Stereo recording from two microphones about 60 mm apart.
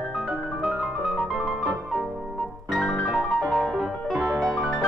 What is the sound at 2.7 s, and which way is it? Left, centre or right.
Music, centre.